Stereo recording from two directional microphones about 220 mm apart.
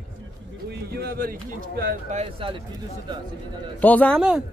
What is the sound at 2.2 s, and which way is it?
Speech, 25° right (ahead or behind).